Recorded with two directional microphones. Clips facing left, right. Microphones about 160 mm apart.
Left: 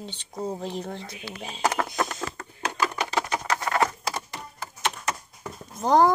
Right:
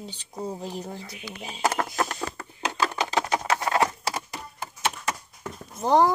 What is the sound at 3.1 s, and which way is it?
Patter, 15° right (ahead or behind).